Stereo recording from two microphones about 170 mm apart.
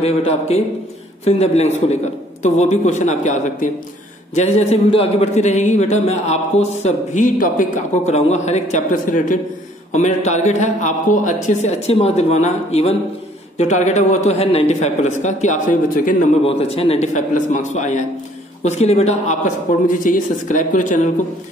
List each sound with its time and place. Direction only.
0.0 s a man's voice: 35° left (ahead or behind)
16.4 s a man's voice: 35° left (ahead or behind)